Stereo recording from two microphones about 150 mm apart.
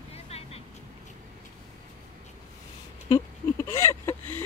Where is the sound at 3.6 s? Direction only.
15° left (ahead or behind).